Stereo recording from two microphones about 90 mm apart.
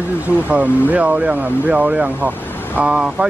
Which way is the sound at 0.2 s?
20° right (ahead or behind).